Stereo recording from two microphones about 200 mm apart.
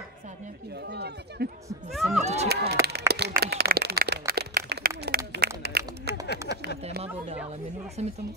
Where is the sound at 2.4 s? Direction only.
55° right (ahead or behind).